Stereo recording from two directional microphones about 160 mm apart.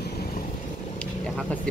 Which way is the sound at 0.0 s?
70° left (ahead or behind).